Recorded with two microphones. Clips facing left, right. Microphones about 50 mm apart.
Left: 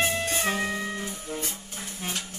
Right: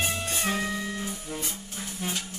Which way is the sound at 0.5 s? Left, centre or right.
Left.